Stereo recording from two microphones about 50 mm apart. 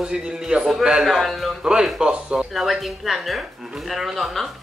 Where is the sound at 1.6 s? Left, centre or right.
Centre.